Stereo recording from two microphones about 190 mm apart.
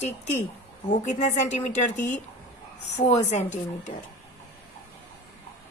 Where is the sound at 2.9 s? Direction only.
35° left (ahead or behind).